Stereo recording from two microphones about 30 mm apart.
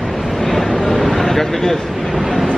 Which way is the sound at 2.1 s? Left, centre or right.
Centre.